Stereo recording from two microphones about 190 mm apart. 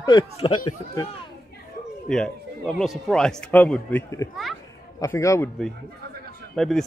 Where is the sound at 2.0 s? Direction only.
5° left (ahead or behind).